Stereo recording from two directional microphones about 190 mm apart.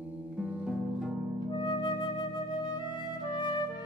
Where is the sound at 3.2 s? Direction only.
25° left (ahead or behind).